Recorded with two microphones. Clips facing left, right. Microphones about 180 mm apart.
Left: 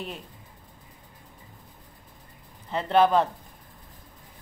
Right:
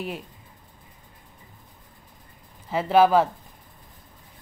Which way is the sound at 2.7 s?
5° right (ahead or behind).